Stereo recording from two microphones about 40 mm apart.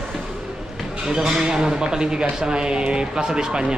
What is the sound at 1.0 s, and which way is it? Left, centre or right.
Speech, centre.